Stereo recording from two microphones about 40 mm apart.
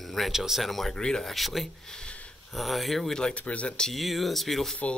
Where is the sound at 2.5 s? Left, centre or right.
Centre.